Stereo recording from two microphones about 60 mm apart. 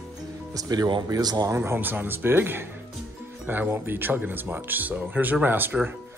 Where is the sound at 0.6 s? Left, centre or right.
Right.